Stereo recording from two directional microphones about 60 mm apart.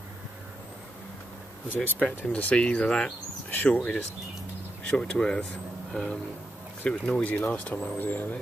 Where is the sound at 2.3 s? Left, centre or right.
Left.